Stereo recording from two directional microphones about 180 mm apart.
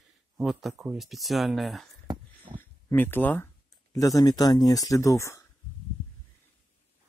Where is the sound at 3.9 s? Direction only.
20° left (ahead or behind).